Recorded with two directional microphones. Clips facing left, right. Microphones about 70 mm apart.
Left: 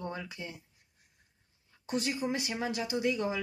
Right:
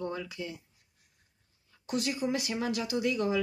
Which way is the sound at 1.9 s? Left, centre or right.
Left.